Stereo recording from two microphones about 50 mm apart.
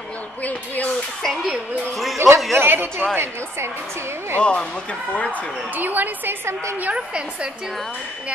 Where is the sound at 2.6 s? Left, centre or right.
Right.